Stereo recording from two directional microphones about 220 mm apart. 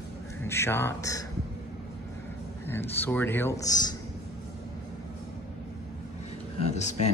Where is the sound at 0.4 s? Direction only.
10° left (ahead or behind).